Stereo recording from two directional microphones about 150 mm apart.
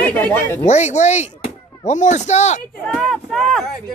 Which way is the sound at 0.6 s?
50° left (ahead or behind).